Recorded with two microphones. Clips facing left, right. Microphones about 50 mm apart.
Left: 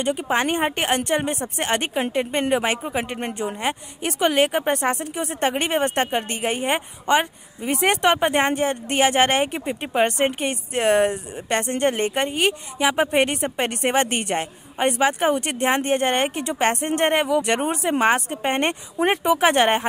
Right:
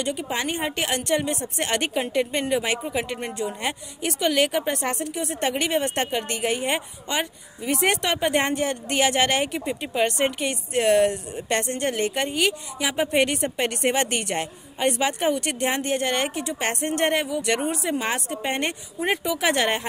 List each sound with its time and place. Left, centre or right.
0.0 s speech: left
1.0 s speech: left
4.8 s speech: centre
11.7 s speech: left
13.1 s speech: left